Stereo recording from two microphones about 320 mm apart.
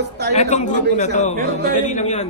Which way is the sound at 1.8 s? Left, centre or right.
Left.